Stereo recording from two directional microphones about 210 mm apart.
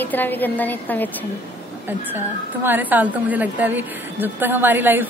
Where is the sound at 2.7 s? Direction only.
10° right (ahead or behind).